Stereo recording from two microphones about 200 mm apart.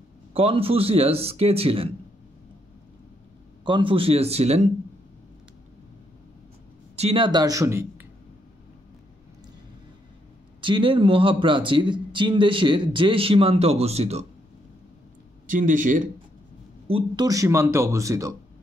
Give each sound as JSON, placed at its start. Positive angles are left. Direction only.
{"t": 0.3, "sound": "speech", "side_deg": -30}
{"t": 3.6, "sound": "speech", "side_deg": -25}
{"t": 7.0, "sound": "speech", "side_deg": -25}
{"t": 10.6, "sound": "speech", "side_deg": -25}
{"t": 15.4, "sound": "a man's voice", "side_deg": -40}
{"t": 16.8, "sound": "speech", "side_deg": -25}